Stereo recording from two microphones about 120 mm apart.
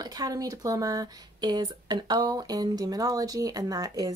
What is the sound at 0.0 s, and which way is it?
Speech, 30° right (ahead or behind).